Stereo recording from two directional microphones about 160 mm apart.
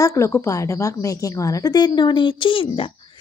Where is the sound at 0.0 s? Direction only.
20° left (ahead or behind).